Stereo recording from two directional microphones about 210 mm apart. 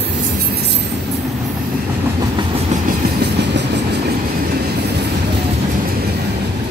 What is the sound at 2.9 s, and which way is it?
Train, 55° right (ahead or behind).